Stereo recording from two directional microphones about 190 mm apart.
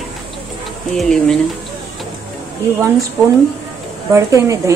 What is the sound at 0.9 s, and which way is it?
Speech, 5° left (ahead or behind).